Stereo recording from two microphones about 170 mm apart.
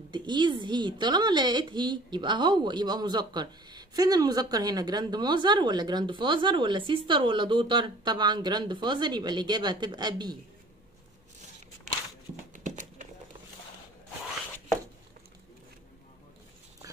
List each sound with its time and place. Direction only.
0.1 s a woman's voice: 25° right (ahead or behind)
12.5 s horse: 45° right (ahead or behind)